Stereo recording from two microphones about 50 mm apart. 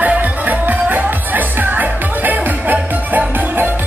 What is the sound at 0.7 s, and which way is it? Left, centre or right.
Music, right.